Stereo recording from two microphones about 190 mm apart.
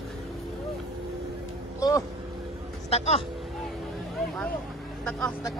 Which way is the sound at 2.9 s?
35° left (ahead or behind).